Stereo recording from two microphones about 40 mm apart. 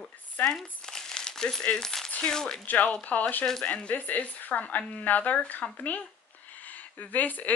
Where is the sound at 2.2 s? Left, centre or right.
Centre.